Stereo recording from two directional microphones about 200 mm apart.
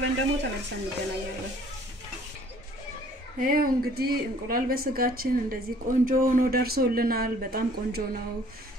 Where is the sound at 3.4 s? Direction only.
45° right (ahead or behind).